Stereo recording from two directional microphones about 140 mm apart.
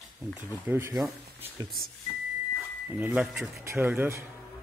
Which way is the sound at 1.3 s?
15° right (ahead or behind).